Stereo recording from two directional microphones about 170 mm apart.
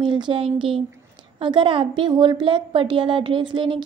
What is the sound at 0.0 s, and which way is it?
A woman's voice, 30° right (ahead or behind).